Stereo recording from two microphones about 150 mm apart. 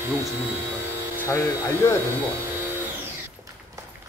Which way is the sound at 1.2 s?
20° left (ahead or behind).